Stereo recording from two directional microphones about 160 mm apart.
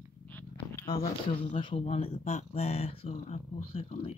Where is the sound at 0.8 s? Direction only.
40° left (ahead or behind).